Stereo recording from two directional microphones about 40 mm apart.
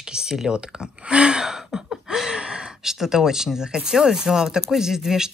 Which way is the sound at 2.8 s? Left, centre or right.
Centre.